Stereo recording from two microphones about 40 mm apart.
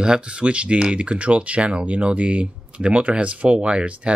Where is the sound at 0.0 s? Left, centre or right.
Right.